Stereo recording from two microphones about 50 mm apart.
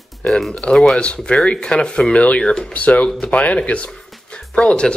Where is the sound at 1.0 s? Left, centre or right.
Left.